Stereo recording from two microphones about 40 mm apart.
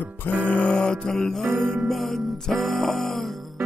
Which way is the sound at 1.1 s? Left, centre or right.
Centre.